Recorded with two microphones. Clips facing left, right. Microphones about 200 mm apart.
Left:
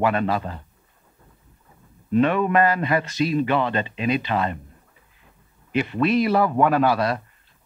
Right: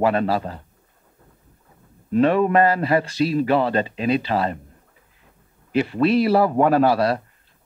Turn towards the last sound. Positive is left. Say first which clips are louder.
# right 3 dB
turn(degrees=-35)  # may be behind; listen again after turning